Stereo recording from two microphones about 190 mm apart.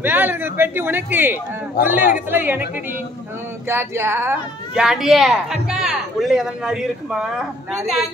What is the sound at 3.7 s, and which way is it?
A child's voice, 10° right (ahead or behind).